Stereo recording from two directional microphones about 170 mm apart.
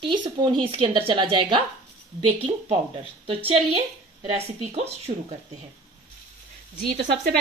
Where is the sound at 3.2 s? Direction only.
35° right (ahead or behind).